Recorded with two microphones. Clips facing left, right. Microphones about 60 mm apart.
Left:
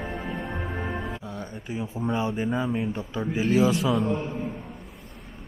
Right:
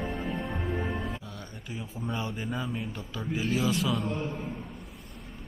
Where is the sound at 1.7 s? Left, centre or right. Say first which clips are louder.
Left 7 dB; left.